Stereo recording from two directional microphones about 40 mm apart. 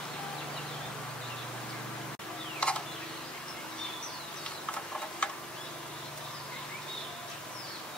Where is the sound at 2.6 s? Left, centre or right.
Left.